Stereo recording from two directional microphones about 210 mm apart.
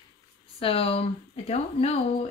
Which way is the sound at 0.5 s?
25° left (ahead or behind).